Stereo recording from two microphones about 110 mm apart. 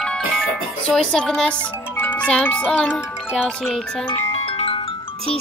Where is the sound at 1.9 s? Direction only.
15° left (ahead or behind); by 4.1 s centre (ahead or behind).